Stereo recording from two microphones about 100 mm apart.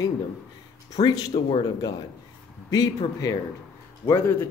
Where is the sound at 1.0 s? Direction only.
45° left (ahead or behind).